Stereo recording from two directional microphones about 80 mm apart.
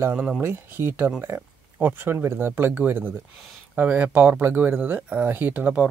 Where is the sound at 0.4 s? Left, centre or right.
Right.